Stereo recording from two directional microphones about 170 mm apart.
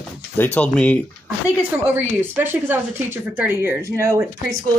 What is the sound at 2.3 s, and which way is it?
A woman's voice, 10° right (ahead or behind).